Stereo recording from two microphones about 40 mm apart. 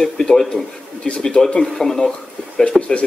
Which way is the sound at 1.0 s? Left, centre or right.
Left.